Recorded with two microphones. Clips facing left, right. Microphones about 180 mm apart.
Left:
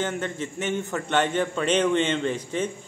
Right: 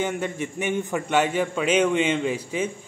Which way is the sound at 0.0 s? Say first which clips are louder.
Right 2 dB; 10° right (ahead or behind).